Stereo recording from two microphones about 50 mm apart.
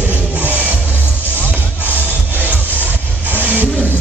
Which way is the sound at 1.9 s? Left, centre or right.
Right.